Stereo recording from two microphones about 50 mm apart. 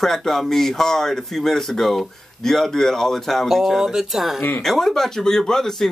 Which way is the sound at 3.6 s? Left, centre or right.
Centre.